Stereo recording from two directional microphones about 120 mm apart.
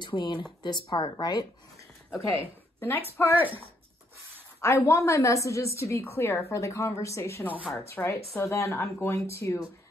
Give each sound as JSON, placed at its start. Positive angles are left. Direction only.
{"t": 0.0, "sound": "speech", "side_deg": 40}
{"t": 2.0, "sound": "a woman's voice", "side_deg": 25}
{"t": 4.6, "sound": "a woman's voice", "side_deg": 25}